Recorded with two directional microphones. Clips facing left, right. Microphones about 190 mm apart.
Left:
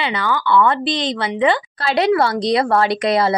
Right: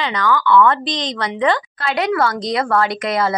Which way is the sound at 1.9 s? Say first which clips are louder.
Left 3 dB; 30° left (ahead or behind).